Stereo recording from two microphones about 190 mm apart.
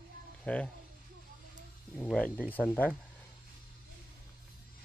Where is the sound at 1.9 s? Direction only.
5° left (ahead or behind).